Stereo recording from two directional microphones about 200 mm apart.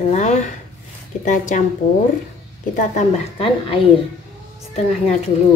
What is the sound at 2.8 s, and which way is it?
A woman's voice, 30° left (ahead or behind).